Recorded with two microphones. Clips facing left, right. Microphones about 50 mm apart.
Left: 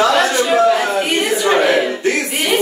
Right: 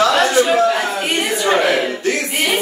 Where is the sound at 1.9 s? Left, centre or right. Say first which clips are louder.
Left 2 dB; centre.